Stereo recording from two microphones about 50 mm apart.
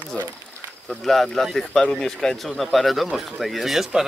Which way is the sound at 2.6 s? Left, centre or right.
Centre.